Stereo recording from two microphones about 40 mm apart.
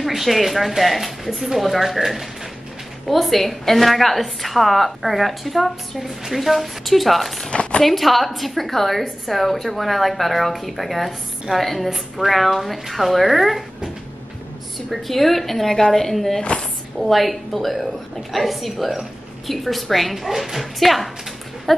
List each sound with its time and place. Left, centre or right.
0.0 s a woman's voice: centre
14.9 s a woman's voice: centre
16.1 s a woman's voice: centre
16.3 s speech: left
17.0 s a woman's voice: centre